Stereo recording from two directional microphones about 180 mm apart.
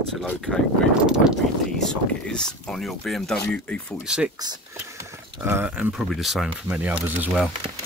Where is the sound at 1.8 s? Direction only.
5° left (ahead or behind).